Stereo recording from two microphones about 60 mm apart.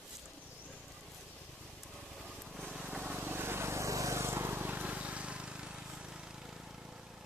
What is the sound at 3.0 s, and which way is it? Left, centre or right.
Vehicle, right.